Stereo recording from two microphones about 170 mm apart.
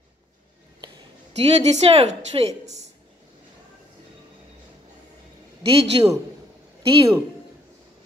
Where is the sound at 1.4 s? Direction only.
40° right (ahead or behind).